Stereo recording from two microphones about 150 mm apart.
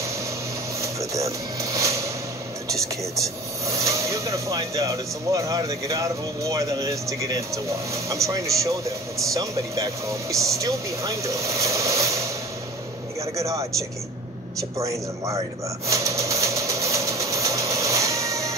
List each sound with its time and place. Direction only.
0.7 s a sound: 20° right (ahead or behind)
3.6 s speech: 20° right (ahead or behind)
13.4 s speech: 20° right (ahead or behind)
15.9 s vehicle: 20° right (ahead or behind)